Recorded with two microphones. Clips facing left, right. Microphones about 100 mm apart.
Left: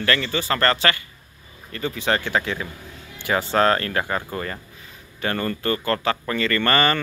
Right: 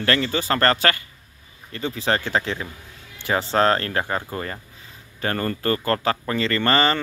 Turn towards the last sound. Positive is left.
turn(degrees=-25)  # may be behind; listen again after turning